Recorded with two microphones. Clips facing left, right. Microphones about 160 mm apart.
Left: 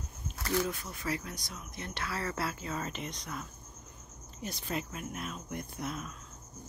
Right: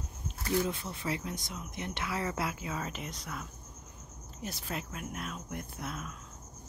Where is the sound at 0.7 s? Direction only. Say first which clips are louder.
Right 1 dB; 25° right (ahead or behind); by 6.1 s centre (ahead or behind).